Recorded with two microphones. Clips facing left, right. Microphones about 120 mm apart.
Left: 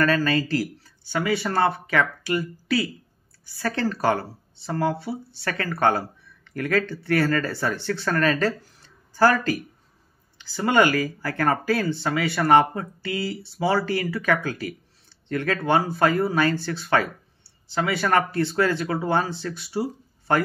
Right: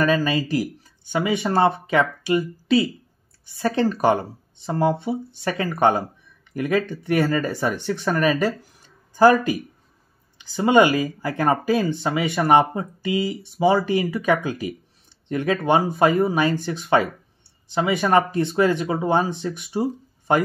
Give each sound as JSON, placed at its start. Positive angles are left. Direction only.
{"t": 0.0, "sound": "speech", "side_deg": -15}